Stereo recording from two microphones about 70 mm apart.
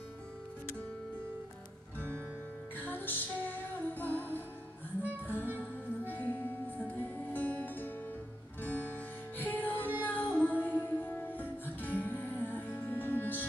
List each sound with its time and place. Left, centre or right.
2.0 s music: right
2.8 s music: left